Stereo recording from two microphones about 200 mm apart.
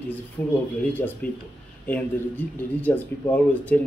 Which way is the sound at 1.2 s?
50° left (ahead or behind).